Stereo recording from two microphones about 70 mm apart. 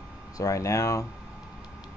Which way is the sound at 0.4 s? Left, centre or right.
Left.